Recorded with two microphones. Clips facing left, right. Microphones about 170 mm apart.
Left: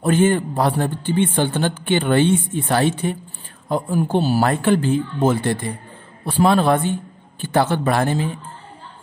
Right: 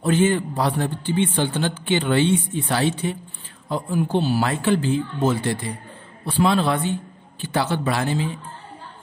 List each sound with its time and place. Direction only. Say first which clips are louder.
0.0 s a man's voice: left 2 dB; 50° left (ahead or behind)